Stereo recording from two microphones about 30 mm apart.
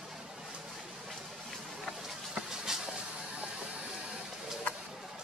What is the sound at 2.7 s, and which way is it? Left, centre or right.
Vehicle, centre.